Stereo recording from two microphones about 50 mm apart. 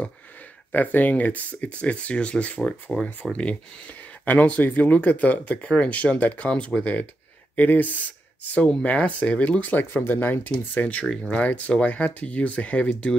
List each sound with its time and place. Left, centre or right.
0.7 s speech: left
4.3 s speech: left